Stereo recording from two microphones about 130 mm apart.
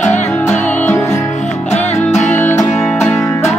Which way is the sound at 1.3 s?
60° left (ahead or behind).